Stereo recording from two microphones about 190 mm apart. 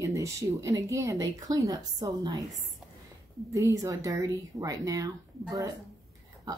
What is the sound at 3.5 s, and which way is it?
Speech, 15° right (ahead or behind).